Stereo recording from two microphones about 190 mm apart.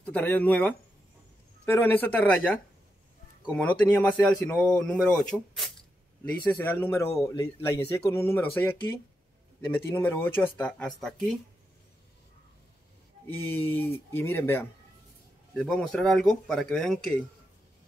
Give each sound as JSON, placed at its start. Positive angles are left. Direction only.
{"t": 0.0, "sound": "speech", "side_deg": 10}
{"t": 13.3, "sound": "speech", "side_deg": 10}